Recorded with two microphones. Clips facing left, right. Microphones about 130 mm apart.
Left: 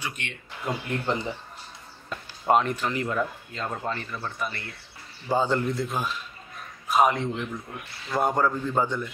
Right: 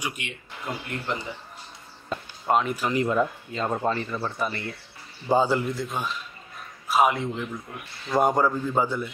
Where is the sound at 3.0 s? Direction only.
20° right (ahead or behind).